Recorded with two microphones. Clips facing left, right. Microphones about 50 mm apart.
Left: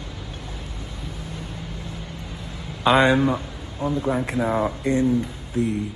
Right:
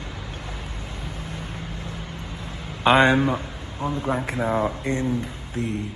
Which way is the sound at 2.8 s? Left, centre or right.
Right.